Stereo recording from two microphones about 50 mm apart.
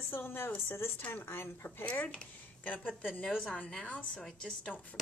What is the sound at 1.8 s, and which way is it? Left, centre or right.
A woman's voice, left.